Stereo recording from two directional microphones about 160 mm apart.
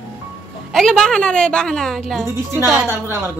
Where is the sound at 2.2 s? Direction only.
15° right (ahead or behind).